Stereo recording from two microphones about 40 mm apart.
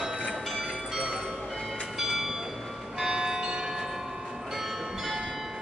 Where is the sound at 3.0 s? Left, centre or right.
Centre.